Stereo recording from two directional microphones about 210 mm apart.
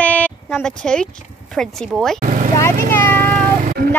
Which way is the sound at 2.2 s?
40° right (ahead or behind).